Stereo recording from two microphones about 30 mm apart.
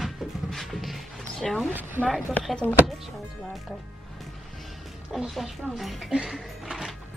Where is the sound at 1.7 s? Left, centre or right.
Right.